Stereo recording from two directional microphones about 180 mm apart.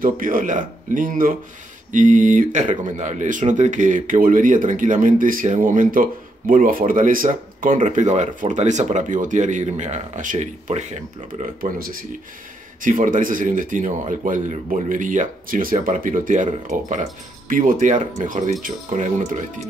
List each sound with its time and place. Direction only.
0.0 s speech: 50° right (ahead or behind)